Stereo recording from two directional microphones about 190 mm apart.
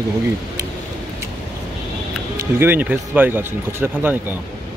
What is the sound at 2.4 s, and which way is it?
Speech, 10° right (ahead or behind).